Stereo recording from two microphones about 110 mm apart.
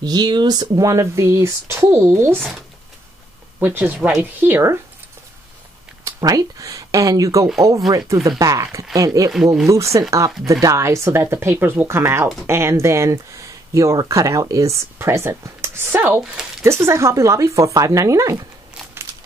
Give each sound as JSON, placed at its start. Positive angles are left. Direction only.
{"t": 0.0, "sound": "speech", "side_deg": -40}
{"t": 3.5, "sound": "speech", "side_deg": -15}
{"t": 6.0, "sound": "speech", "side_deg": -30}
{"t": 9.3, "sound": "speech", "side_deg": -5}
{"t": 9.7, "sound": "speech", "side_deg": -30}